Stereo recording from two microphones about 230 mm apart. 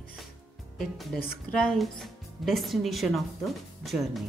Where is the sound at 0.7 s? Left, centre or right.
Centre.